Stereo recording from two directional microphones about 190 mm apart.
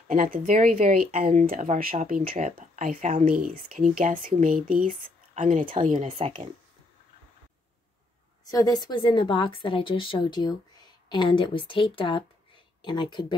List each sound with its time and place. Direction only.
0.1 s speech: 45° right (ahead or behind)
5.0 s a sound: 40° right (ahead or behind)
5.6 s speech: 30° right (ahead or behind)
8.5 s a woman's voice: 20° left (ahead or behind)